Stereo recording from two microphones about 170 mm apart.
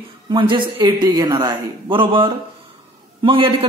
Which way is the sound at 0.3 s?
30° right (ahead or behind).